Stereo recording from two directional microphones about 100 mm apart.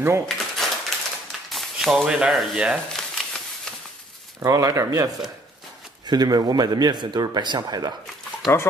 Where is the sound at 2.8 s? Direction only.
5° left (ahead or behind).